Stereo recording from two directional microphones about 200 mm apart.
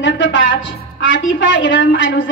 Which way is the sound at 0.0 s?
65° left (ahead or behind).